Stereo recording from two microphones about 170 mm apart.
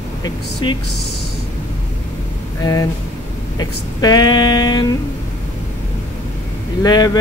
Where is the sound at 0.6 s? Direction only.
25° left (ahead or behind).